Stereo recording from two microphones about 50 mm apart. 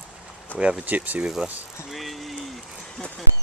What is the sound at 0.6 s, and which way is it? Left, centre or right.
Speech, right.